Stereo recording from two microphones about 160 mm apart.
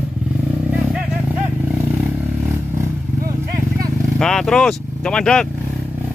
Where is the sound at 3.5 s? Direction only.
20° right (ahead or behind).